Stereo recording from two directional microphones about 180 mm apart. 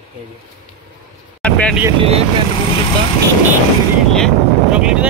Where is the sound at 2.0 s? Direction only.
35° right (ahead or behind).